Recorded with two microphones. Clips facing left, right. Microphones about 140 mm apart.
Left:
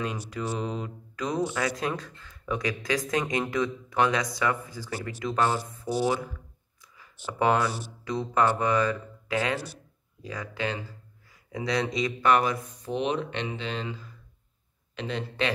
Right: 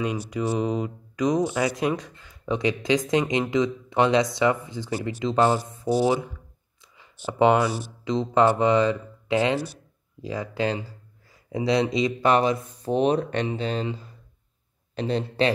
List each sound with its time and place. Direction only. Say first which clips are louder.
0.0 s a man's voice: right 5 dB; 10° right (ahead or behind); by 13.8 s 40° right (ahead or behind)
15.0 s a man's voice: right 7 dB; 35° right (ahead or behind)